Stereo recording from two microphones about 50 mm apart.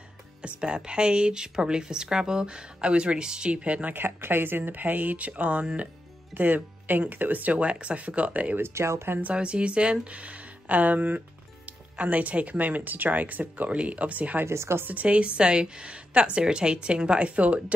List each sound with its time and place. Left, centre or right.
0.4 s speech: right
3.9 s speech: right
6.3 s speech: right
8.5 s speech: right
9.2 s speech: right
14.4 s speech: right
14.9 s speech: right